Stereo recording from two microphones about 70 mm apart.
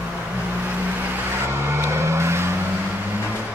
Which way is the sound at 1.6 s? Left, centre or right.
Right.